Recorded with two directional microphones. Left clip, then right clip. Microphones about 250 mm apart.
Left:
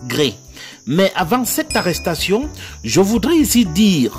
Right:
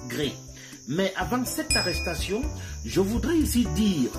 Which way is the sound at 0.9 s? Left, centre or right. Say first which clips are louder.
Left 11 dB; left.